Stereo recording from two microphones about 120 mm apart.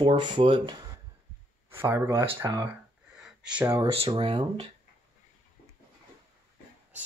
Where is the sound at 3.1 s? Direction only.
5° right (ahead or behind).